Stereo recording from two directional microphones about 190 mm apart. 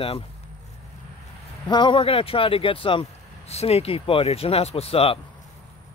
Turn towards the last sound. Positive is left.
turn(degrees=30)  # may be behind; listen again after turning